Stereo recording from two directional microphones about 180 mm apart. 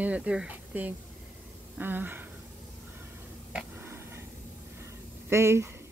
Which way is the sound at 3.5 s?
15° right (ahead or behind).